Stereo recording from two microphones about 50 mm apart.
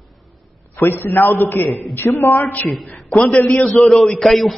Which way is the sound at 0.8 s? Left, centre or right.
Left.